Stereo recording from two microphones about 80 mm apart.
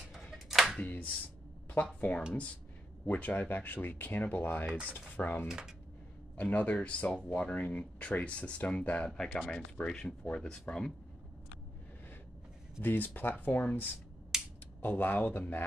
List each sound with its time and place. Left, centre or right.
0.5 s a sound: centre
0.8 s speech: centre
5.5 s speech: centre
6.3 s speech: centre
12.8 s speech: left
14.3 s finger snapping: centre
14.8 s speech: left